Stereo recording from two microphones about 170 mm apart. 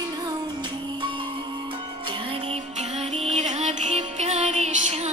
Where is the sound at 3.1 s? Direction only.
40° right (ahead or behind).